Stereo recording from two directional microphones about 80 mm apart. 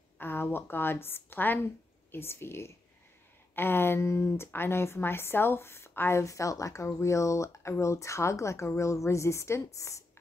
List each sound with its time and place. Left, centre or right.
0.2 s a woman's voice: left